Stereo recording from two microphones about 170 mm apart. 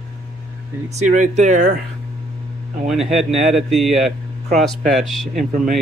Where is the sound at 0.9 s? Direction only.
45° right (ahead or behind).